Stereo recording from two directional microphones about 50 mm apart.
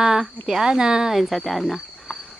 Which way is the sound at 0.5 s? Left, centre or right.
Centre.